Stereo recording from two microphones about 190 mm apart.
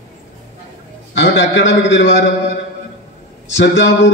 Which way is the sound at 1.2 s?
70° left (ahead or behind).